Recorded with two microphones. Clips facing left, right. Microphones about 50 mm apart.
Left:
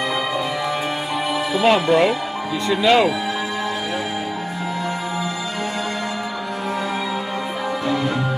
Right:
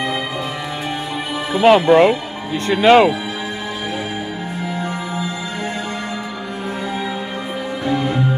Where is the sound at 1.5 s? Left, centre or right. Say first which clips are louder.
Right 6 dB; right.